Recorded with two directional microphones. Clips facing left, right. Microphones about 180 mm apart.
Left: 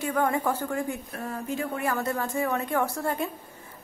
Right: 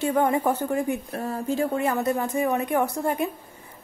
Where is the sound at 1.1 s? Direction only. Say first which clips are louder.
Right 5 dB; 30° right (ahead or behind).